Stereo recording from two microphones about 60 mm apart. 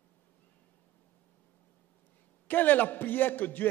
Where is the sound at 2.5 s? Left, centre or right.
Left.